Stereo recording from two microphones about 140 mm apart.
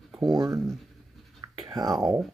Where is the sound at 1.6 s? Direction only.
30° right (ahead or behind).